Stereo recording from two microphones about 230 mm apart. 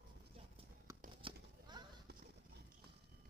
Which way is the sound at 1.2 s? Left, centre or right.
Centre.